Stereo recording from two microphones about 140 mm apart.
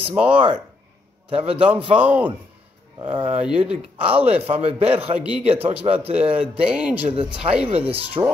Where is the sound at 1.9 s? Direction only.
10° right (ahead or behind).